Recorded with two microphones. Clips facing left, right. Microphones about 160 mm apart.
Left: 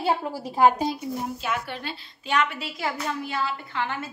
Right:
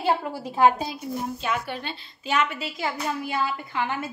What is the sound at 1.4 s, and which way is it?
A woman's voice, centre (ahead or behind).